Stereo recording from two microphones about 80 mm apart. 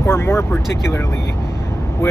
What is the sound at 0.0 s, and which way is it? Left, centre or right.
Speech, left.